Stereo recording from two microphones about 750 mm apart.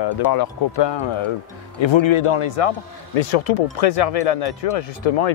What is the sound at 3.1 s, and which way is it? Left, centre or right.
Speech, left.